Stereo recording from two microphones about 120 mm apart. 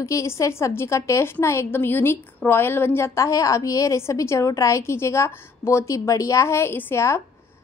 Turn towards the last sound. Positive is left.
turn(degrees=20)  # may be behind; listen again after turning